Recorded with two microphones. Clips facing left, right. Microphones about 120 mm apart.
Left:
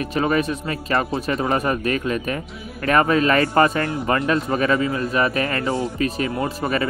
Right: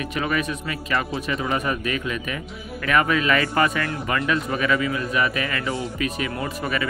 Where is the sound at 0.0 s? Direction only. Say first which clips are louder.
Left 5 dB; 35° left (ahead or behind).